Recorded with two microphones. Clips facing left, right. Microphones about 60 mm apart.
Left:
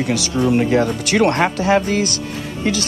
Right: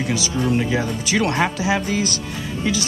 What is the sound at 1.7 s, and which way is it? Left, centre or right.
Music, left.